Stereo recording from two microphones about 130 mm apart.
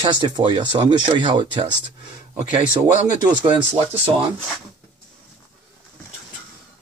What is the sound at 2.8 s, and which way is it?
Speech, 35° right (ahead or behind).